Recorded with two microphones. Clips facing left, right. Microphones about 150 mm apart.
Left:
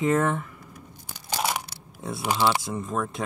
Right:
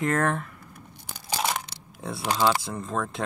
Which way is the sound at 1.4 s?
5° left (ahead or behind).